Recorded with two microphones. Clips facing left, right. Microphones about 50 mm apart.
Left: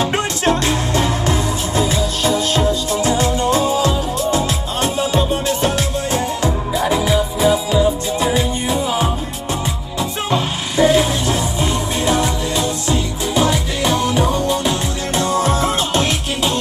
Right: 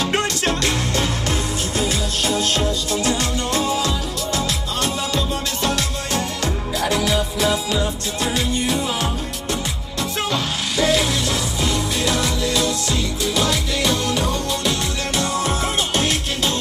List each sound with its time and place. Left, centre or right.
0.0 s music: left
10.3 s music: left